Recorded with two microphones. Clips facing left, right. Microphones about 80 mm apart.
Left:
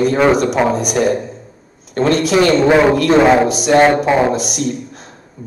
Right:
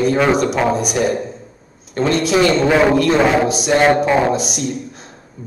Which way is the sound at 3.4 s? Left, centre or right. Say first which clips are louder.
Left 3 dB; left.